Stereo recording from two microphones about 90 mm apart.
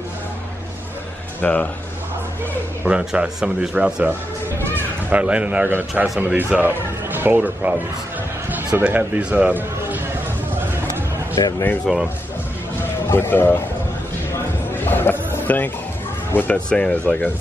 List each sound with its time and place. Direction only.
1.4 s speech: 15° left (ahead or behind)
2.8 s a man's voice: 10° right (ahead or behind)
5.1 s a man's voice: 15° right (ahead or behind)
8.8 s speech: 15° right (ahead or behind)
11.9 s speech: centre (ahead or behind)
13.1 s speech: 25° left (ahead or behind)
14.3 s a sound: 25° left (ahead or behind)
16.3 s speech: 20° left (ahead or behind)
16.5 s speech: 10° left (ahead or behind)